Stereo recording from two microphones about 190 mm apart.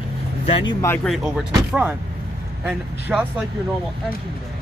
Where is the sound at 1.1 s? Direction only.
5° right (ahead or behind).